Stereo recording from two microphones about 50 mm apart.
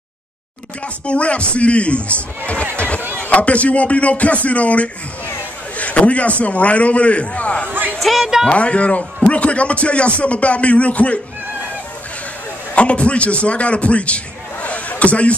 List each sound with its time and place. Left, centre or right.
1.0 s speech: left
3.0 s a sound: right
3.3 s speech: left
5.8 s a sound: left
6.4 s speech: left
8.0 s music: centre
8.5 s speech: left
12.7 s a man's voice: left